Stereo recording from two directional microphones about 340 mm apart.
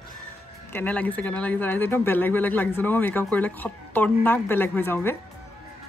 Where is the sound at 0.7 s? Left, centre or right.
Centre.